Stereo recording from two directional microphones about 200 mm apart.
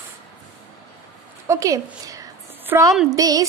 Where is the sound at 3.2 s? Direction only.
15° right (ahead or behind).